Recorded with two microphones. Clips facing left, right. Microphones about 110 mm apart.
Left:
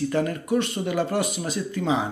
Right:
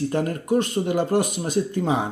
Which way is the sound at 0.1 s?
45° right (ahead or behind).